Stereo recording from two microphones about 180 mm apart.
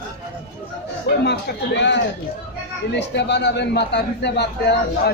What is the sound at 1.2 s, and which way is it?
A man's voice, 70° left (ahead or behind).